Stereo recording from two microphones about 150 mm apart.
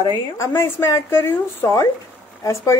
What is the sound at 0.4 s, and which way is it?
A woman's voice, 15° left (ahead or behind).